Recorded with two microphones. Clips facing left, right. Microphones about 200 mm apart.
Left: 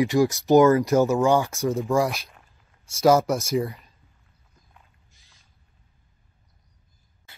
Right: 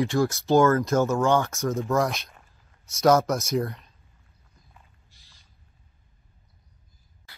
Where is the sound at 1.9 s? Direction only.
Centre (ahead or behind).